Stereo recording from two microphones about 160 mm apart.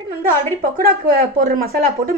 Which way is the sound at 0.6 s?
65° right (ahead or behind).